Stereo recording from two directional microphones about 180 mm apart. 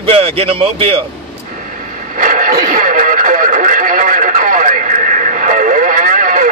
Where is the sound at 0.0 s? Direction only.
30° right (ahead or behind).